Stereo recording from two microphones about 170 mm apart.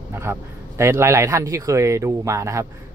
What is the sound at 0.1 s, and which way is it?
Speech, 15° right (ahead or behind).